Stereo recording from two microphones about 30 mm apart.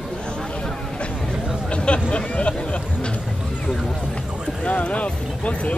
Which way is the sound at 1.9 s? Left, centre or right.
Left.